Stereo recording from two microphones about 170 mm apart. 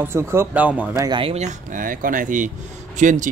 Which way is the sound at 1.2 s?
40° right (ahead or behind).